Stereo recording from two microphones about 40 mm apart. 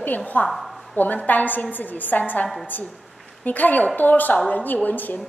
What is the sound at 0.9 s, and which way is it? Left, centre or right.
A woman's voice, left.